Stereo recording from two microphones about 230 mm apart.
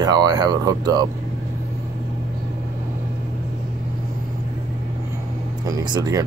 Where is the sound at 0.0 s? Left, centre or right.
Centre.